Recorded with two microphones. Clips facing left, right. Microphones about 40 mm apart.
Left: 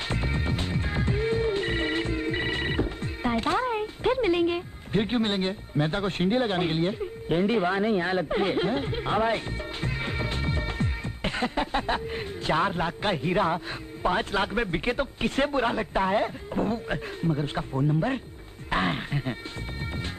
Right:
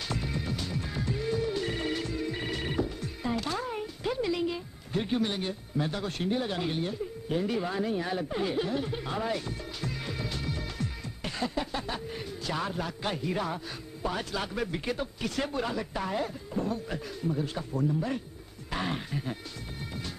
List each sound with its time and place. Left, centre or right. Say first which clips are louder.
0.1 s music: left 3 dB; left
14.0 s speech: left 7 dB; left